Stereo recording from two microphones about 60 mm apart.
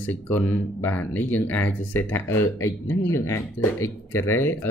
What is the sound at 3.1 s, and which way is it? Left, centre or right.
Speech, left.